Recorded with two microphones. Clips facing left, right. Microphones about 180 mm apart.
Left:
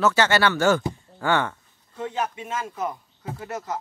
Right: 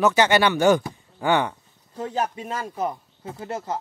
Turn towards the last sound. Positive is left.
turn(degrees=-30)  # may be behind; listen again after turning